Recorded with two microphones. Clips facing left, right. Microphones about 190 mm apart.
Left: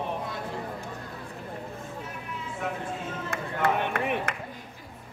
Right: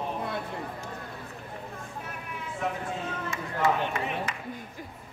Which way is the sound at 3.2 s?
55° left (ahead or behind).